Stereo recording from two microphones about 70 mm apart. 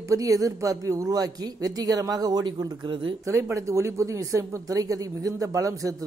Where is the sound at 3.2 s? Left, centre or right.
Right.